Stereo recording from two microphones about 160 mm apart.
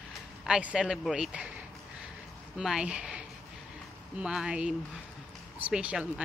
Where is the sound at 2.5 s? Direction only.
5° right (ahead or behind).